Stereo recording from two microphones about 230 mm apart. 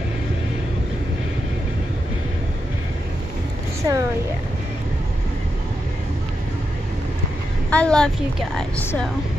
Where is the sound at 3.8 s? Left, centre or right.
Centre.